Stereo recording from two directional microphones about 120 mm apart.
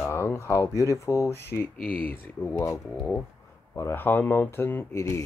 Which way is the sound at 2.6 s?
25° left (ahead or behind).